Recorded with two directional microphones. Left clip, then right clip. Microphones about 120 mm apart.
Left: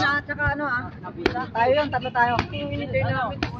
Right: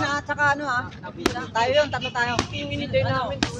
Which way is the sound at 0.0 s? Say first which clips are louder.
Right 1 dB; 10° right (ahead or behind).